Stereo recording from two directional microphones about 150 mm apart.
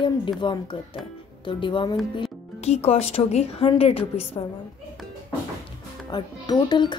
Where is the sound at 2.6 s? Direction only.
45° left (ahead or behind).